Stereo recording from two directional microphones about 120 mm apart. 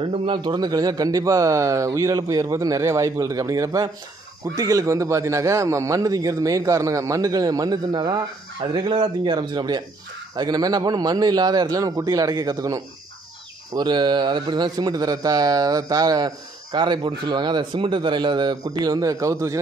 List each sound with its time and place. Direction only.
0.0 s speech: 45° right (ahead or behind); by 19.6 s 25° right (ahead or behind)